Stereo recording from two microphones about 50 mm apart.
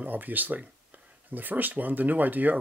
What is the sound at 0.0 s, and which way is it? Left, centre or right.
Speech, right.